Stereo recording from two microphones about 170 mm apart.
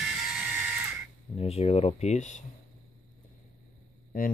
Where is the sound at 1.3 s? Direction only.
35° left (ahead or behind).